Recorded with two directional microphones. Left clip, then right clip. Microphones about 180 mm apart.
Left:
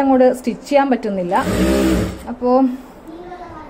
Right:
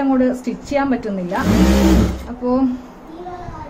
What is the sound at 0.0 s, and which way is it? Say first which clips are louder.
A woman's voice: left 5 dB; 40° left (ahead or behind).